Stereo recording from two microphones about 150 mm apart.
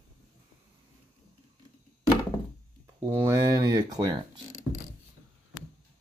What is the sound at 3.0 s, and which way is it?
Speech, 20° right (ahead or behind).